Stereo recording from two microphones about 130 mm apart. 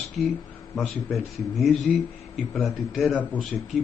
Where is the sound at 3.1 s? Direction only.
10° left (ahead or behind).